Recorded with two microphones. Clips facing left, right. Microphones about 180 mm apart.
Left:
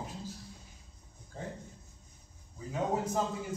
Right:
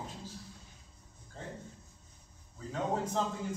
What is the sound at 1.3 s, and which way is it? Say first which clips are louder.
Speech: left 4 dB; 10° left (ahead or behind).